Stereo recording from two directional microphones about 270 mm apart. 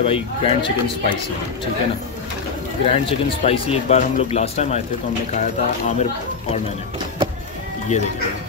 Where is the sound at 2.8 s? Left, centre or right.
Left.